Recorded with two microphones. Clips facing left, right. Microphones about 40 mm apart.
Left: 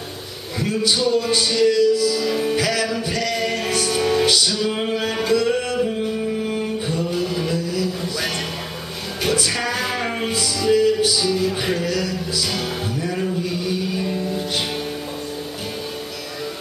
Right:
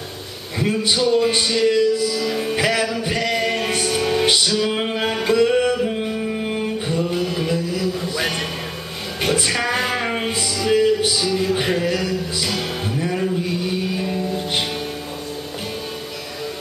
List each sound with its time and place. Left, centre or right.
0.6 s a man's voice: centre
2.1 s music: centre
2.5 s music: right
7.5 s a sound: right
9.2 s music: right
11.1 s music: centre